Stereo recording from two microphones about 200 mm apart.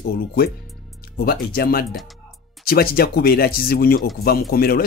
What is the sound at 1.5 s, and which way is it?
Speech, 50° left (ahead or behind).